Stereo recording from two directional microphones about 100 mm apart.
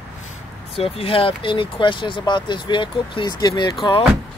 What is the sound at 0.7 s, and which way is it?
Speech, 70° left (ahead or behind).